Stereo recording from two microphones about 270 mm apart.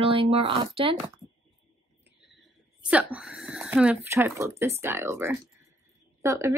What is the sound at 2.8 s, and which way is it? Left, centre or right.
A woman's voice, centre.